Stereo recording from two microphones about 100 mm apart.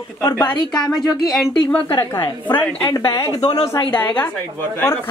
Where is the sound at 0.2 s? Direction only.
35° left (ahead or behind).